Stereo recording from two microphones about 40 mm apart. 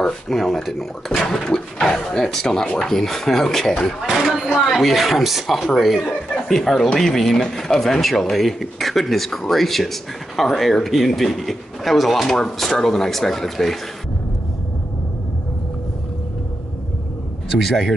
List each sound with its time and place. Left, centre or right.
0.0 s speech: centre
1.2 s speech: centre
4.1 s speech: centre
4.6 s speech: centre
17.5 s speech: centre